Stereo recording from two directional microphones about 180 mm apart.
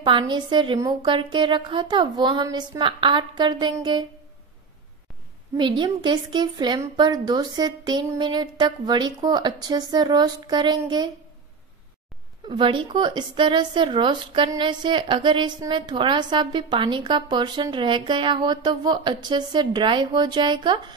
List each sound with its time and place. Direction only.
0.0 s a woman's voice: 25° right (ahead or behind)
5.6 s a woman's voice: 25° right (ahead or behind)
12.4 s a woman's voice: 30° right (ahead or behind)